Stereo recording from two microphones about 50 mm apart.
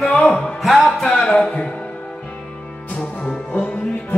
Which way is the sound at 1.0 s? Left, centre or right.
Centre.